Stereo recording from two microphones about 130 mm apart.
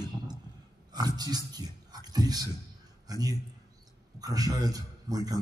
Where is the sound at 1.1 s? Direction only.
30° right (ahead or behind).